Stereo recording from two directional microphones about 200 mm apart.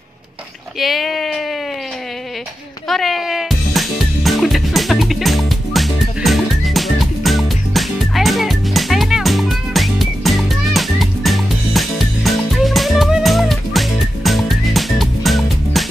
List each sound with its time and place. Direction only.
0.7 s speech: centre (ahead or behind)
2.9 s music: centre (ahead or behind)